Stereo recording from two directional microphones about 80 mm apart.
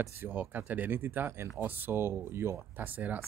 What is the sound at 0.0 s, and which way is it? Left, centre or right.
Speech, right.